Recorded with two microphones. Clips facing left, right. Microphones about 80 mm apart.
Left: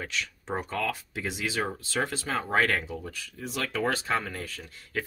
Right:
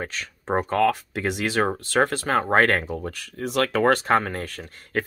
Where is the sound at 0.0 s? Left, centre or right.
Right.